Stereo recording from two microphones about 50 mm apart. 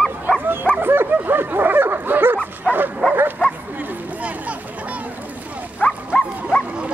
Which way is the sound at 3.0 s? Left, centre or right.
Left.